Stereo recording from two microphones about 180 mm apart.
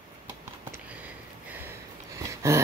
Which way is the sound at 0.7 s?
10° right (ahead or behind).